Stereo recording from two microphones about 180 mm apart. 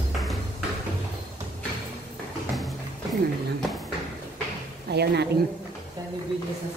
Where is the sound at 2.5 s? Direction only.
Centre (ahead or behind).